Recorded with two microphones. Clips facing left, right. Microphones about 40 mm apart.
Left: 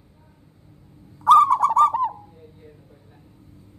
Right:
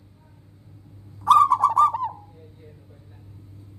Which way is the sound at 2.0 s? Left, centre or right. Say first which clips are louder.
Left 5 dB; centre.